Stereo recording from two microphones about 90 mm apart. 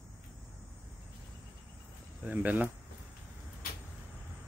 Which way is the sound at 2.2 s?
15° right (ahead or behind).